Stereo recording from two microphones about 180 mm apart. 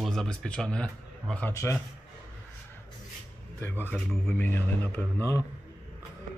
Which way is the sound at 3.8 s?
5° left (ahead or behind).